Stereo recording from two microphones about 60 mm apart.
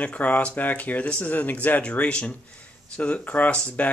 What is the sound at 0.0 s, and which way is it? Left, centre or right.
Speech, left.